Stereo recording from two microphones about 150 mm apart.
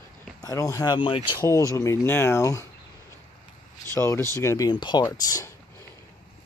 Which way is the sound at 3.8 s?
15° left (ahead or behind).